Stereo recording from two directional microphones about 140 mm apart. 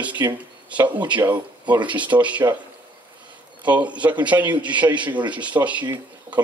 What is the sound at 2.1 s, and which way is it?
Speech, 10° right (ahead or behind).